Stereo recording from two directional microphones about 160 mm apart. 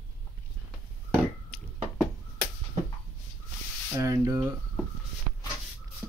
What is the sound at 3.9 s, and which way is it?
Speech, 20° right (ahead or behind).